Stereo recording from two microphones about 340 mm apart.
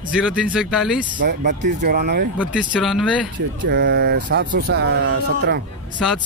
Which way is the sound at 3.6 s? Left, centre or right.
Right.